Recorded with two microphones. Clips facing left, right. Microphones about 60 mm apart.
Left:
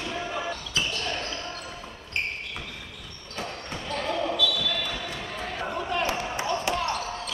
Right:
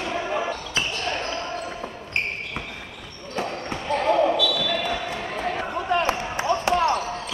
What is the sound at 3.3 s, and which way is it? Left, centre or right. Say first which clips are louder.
Basketball bounce: right 6 dB; right.